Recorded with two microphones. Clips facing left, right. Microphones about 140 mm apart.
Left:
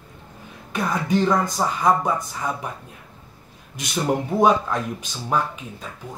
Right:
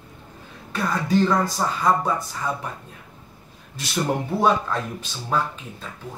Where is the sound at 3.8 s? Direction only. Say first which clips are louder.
Left 1 dB; 15° left (ahead or behind).